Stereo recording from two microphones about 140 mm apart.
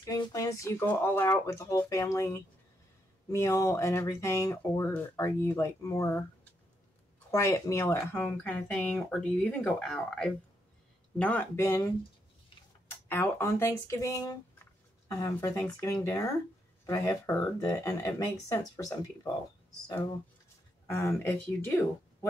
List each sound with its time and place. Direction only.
0.0 s speech: 25° left (ahead or behind)
7.2 s speech: 20° left (ahead or behind)
12.9 s speech: 15° left (ahead or behind)
20.8 s speech: 20° left (ahead or behind)